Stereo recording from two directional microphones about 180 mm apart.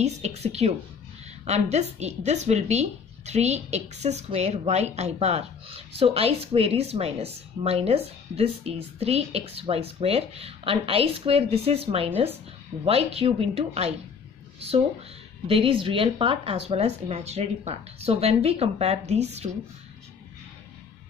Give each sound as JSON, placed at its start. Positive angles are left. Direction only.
{"t": 0.0, "sound": "speech", "side_deg": -35}
{"t": 15.4, "sound": "speech", "side_deg": -30}